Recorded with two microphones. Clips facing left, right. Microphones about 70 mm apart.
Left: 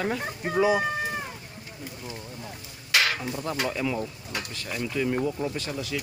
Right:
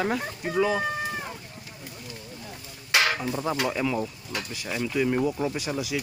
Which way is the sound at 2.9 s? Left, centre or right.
Centre.